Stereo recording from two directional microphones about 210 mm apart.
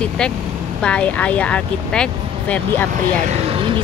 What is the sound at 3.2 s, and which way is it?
Speech, 30° right (ahead or behind).